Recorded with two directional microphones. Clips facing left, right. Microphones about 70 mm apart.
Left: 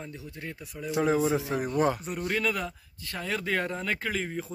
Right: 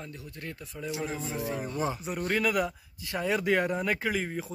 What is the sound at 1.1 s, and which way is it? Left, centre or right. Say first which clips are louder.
Speech: left 7 dB; left.